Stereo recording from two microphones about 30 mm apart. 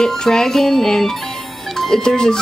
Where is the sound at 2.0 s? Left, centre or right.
Centre.